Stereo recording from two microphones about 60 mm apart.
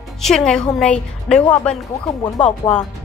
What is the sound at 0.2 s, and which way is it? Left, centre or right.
A woman's voice, centre.